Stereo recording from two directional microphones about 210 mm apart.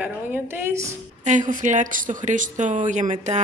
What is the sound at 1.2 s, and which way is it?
Speech, 35° right (ahead or behind).